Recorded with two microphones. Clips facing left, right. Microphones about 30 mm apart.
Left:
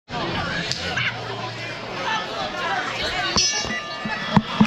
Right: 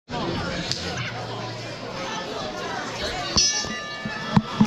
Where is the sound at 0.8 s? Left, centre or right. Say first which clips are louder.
Left 5 dB; left.